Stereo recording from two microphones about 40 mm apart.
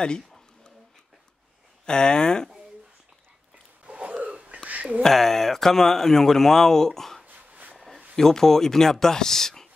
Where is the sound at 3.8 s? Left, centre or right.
Right.